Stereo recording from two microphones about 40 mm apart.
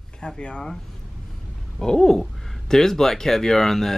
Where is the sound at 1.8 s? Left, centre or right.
Centre.